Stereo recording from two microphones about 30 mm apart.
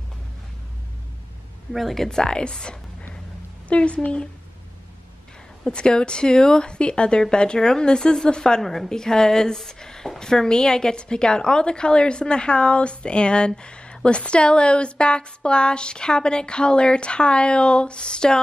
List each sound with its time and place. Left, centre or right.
1.7 s speech: centre
2.0 s speech: left
3.6 s a woman's voice: left
5.7 s a woman's voice: left
8.6 s a woman's voice: centre
8.9 s a woman's voice: left